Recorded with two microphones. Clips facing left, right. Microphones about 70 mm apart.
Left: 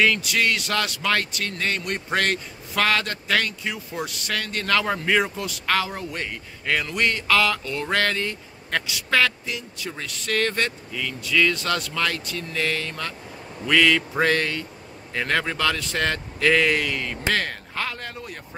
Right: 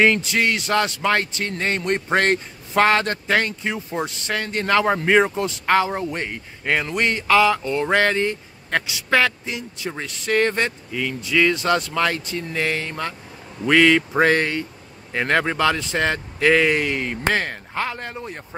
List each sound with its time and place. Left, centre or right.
0.0 s a man's voice: right